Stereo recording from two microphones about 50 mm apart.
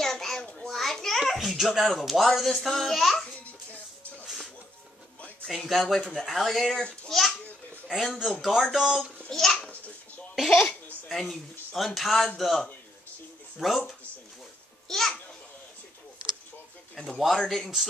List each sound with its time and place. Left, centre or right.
0.0 s a sound: centre
0.4 s a sound: centre
0.7 s a sound: centre
1.3 s a child's voice: centre
5.5 s speech: centre
6.8 s a sound: centre
7.9 s speech: centre
8.7 s speech: centre
9.3 s babbling: centre
10.3 s speech: centre
14.9 s babbling: centre
17.4 s speech: centre